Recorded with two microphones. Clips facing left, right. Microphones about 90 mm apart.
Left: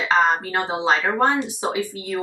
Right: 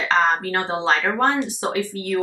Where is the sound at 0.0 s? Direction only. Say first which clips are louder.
Even; 15° left (ahead or behind).